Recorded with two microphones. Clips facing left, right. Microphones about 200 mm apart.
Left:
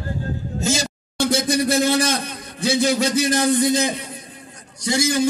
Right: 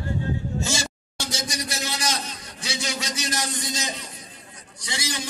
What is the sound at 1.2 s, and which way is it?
A man's voice, 55° left (ahead or behind).